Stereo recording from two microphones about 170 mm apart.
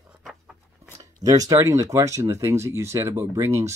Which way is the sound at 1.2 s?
20° right (ahead or behind).